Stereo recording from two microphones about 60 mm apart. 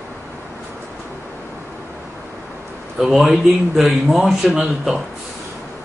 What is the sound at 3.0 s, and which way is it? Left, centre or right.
Speech, centre.